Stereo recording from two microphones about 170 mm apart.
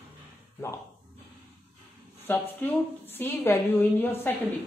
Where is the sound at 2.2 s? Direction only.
10° left (ahead or behind).